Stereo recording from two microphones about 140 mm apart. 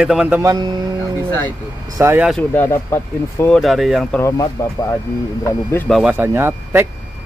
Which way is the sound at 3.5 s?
Centre (ahead or behind).